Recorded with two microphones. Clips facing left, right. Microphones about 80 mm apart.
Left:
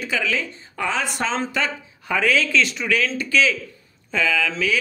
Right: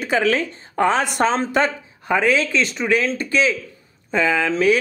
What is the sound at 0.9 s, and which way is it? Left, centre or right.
Speech, right.